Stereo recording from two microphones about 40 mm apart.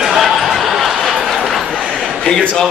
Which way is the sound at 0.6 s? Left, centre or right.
Centre.